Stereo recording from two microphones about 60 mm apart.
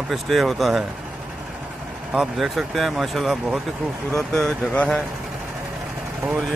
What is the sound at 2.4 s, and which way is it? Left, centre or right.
Speech, centre.